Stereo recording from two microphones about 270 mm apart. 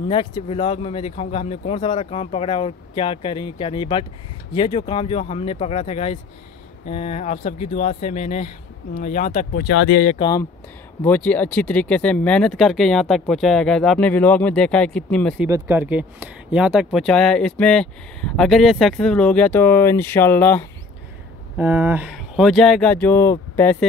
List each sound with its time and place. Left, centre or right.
0.1 s speech: centre
9.7 s speech: left
10.0 s speech: centre
11.1 s speech: centre
15.4 s speech: centre
21.5 s speech: centre